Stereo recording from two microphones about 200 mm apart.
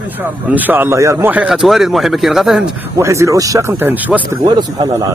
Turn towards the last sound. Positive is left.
turn(degrees=-20)  # may be behind; listen again after turning